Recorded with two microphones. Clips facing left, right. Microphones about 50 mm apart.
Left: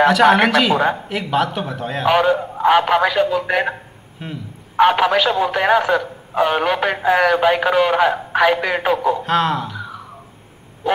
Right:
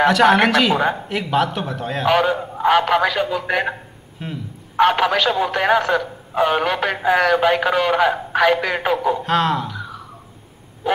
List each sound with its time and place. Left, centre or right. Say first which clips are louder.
0.0 s a man's voice: left 1 dB; centre